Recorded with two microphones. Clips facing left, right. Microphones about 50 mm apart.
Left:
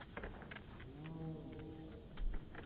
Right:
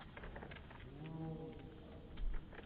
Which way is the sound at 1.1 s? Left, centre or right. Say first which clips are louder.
Right 1 dB; centre.